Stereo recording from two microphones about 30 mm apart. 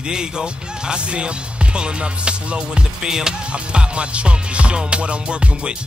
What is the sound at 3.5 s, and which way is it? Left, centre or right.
Music, right.